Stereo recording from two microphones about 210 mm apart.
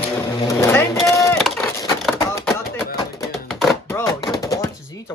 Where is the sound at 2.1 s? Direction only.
15° left (ahead or behind).